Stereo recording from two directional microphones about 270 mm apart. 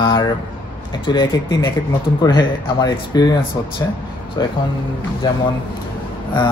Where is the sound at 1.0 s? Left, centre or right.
Centre.